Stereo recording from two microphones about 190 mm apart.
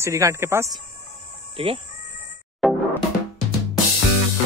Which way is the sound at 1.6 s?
30° right (ahead or behind).